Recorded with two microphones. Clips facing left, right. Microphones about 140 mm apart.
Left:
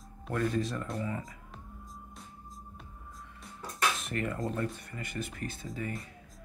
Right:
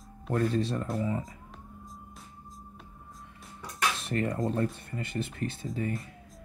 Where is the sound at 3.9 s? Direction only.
30° right (ahead or behind).